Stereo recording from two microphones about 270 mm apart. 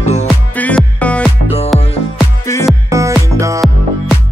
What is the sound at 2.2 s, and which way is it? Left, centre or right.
Music, centre.